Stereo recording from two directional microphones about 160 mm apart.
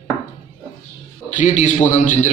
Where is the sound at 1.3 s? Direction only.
50° left (ahead or behind).